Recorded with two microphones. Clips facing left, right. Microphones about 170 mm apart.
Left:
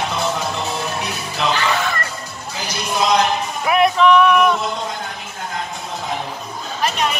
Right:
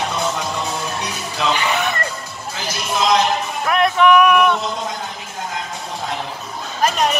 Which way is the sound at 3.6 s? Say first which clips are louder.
Left 1 dB; 5° left (ahead or behind).